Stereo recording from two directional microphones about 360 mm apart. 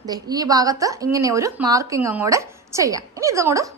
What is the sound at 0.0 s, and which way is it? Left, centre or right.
A woman's voice, centre.